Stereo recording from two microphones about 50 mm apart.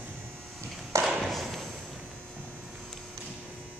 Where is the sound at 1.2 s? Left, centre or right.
Centre.